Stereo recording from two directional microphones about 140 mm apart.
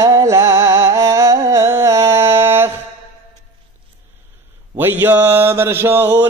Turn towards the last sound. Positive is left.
turn(degrees=-15)  # may be behind; listen again after turning